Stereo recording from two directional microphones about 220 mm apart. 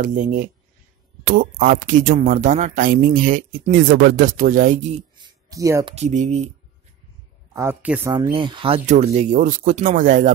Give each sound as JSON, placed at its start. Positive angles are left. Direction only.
{"t": 0.0, "sound": "speech", "side_deg": -35}
{"t": 5.5, "sound": "a woman's voice", "side_deg": -15}
{"t": 5.9, "sound": "speech", "side_deg": -30}
{"t": 7.5, "sound": "a woman's voice", "side_deg": -10}
{"t": 8.1, "sound": "speech", "side_deg": -20}